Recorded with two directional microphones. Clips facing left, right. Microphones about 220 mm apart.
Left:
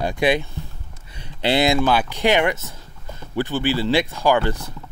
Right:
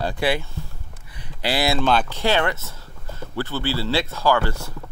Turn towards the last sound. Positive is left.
turn(degrees=15)  # may be behind; listen again after turning